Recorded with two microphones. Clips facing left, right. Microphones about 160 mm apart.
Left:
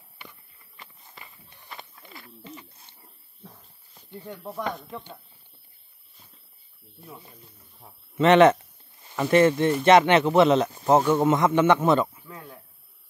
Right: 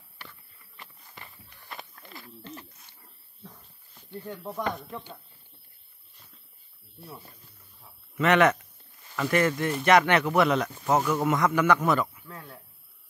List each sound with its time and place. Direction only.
1.1 s walk: centre (ahead or behind)
1.7 s a sound: centre (ahead or behind)
2.8 s wild animals: 25° left (ahead or behind)
4.2 s speech: 5° left (ahead or behind)
8.2 s speech: 25° left (ahead or behind)
12.3 s a sound: 10° left (ahead or behind)